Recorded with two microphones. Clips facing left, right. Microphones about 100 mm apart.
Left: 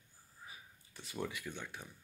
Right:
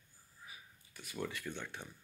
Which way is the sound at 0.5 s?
30° left (ahead or behind).